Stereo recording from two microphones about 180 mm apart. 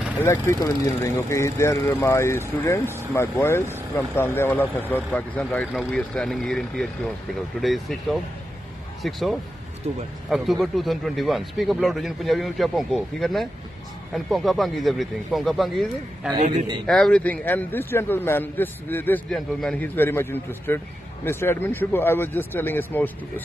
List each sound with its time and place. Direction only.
0.2 s a man's voice: 15° left (ahead or behind); by 9.4 s centre (ahead or behind)
9.8 s speech: 40° right (ahead or behind)
10.3 s a man's voice: centre (ahead or behind)